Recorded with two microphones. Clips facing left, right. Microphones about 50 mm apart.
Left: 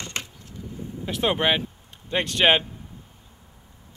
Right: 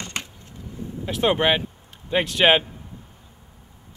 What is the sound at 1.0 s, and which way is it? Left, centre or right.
Speech, centre.